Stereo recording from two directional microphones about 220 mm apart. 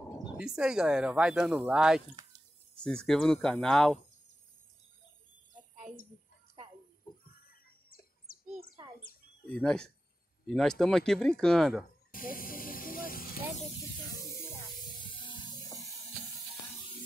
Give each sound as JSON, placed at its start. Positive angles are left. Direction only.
{"t": 0.4, "sound": "speech", "side_deg": -5}
{"t": 7.2, "sound": "a sound", "side_deg": 40}
{"t": 9.5, "sound": "speech", "side_deg": 5}
{"t": 12.1, "sound": "hiss", "side_deg": 40}
{"t": 15.2, "sound": "music", "side_deg": 20}